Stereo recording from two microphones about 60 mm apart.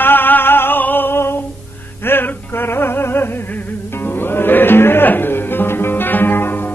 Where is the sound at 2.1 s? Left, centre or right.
Left.